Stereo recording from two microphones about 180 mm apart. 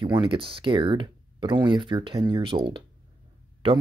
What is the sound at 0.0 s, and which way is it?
Speech, 25° right (ahead or behind).